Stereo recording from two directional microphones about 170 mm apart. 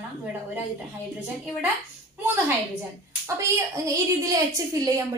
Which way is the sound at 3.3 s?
20° right (ahead or behind).